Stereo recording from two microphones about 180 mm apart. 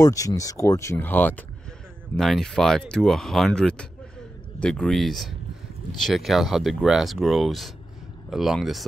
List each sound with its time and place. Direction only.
0.0 s speech: 20° left (ahead or behind); by 8.8 s centre (ahead or behind)